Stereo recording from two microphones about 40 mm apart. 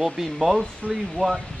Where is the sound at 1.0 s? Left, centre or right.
Centre.